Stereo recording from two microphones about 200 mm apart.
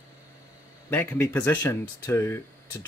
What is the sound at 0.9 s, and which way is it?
Speech, 10° left (ahead or behind).